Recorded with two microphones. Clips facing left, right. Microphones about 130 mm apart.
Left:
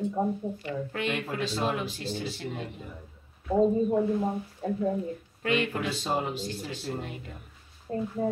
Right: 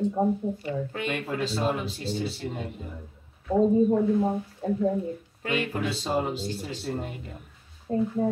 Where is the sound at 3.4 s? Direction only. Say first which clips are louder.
Right 3 dB; centre (ahead or behind).